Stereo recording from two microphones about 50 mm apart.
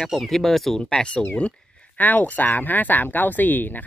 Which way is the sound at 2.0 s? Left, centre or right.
Left.